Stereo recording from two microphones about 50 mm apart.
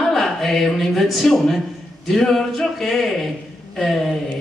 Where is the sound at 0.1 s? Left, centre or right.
Centre.